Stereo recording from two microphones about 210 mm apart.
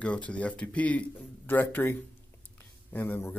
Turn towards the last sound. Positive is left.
turn(degrees=10)  # may be behind; listen again after turning